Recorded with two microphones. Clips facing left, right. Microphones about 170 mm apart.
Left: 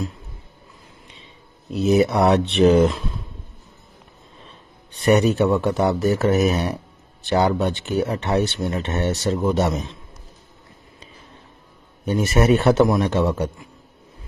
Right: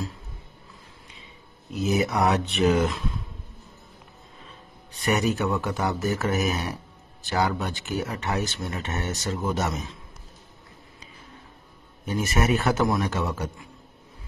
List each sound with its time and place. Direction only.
1.7 s speech: 30° left (ahead or behind)
4.9 s speech: 30° left (ahead or behind)
12.1 s speech: 30° left (ahead or behind)